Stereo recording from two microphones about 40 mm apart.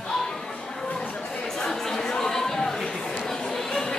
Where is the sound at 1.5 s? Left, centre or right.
Centre.